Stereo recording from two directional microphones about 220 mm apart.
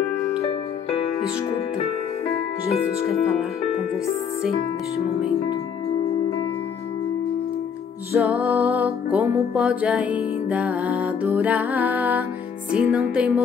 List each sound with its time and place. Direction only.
0.9 s music: 25° left (ahead or behind)
8.1 s music: 10° right (ahead or behind)